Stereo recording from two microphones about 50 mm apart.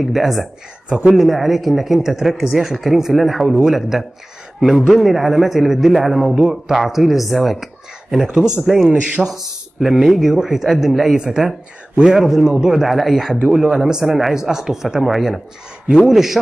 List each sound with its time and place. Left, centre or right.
0.0 s speech: centre
0.8 s speech: centre
1.2 s speech: centre